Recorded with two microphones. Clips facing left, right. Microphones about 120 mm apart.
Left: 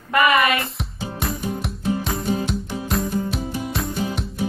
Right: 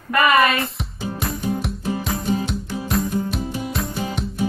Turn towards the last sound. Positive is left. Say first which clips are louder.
# left 1 dB
turn(degrees=0)  # may be behind; listen again after turning